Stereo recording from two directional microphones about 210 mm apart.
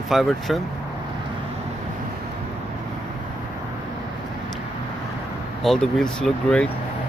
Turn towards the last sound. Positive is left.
turn(degrees=5)  # may be behind; listen again after turning